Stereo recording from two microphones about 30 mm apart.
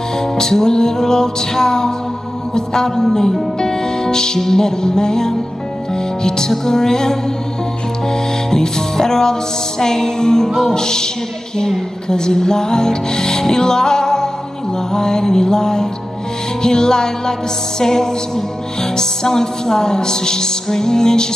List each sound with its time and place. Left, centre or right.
0.2 s music: centre